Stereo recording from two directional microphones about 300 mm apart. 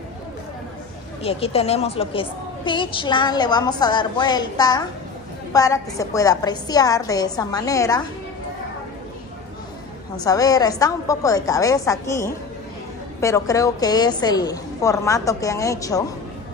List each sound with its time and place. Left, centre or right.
1.2 s a woman's voice: centre
10.1 s a woman's voice: centre